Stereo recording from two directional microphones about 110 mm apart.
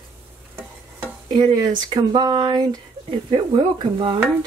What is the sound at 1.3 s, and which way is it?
Speech, 40° right (ahead or behind).